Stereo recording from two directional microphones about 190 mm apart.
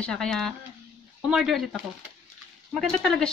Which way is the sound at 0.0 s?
5° left (ahead or behind).